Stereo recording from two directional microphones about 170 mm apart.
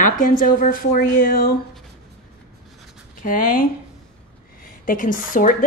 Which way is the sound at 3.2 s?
55° left (ahead or behind).